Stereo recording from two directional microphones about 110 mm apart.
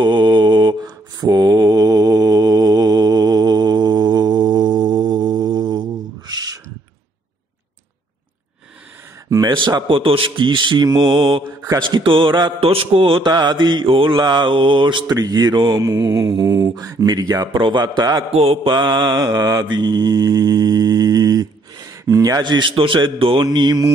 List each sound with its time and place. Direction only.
0.0 s mantra: 45° right (ahead or behind)
9.3 s a sound: 40° right (ahead or behind)
9.8 s a man's voice: 55° right (ahead or behind)
12.6 s a man's voice: 55° right (ahead or behind)
13.3 s mantra: 40° right (ahead or behind)
18.3 s a man's voice: 60° right (ahead or behind)
18.7 s mantra: 40° right (ahead or behind)
23.4 s mantra: 40° right (ahead or behind)